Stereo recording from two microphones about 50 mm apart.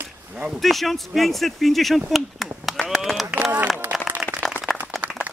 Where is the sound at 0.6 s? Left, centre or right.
Centre.